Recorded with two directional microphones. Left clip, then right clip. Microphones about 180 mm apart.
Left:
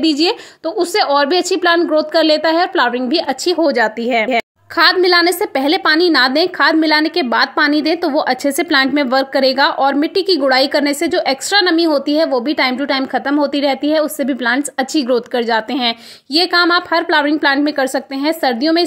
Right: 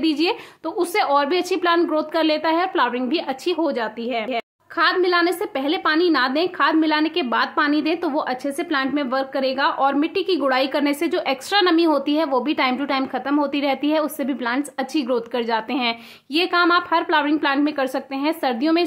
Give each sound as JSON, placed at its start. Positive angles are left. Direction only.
{"t": 0.0, "sound": "a woman's voice", "side_deg": 25}